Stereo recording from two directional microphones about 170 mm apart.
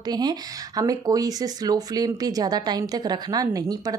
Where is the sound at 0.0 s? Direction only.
25° right (ahead or behind).